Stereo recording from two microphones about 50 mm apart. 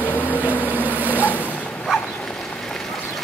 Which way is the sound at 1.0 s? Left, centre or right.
Right.